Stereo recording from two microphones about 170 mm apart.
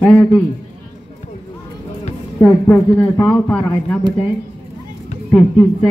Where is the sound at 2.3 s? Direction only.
10° left (ahead or behind).